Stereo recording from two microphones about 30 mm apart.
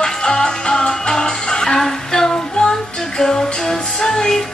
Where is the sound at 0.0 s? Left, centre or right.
Left.